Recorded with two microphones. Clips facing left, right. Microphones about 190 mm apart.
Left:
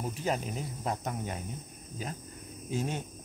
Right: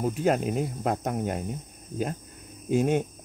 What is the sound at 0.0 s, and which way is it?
Speech, 55° right (ahead or behind).